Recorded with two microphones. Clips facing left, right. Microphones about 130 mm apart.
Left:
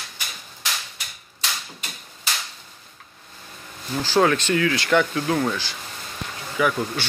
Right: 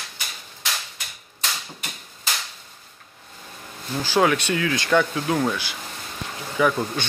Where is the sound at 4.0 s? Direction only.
15° right (ahead or behind).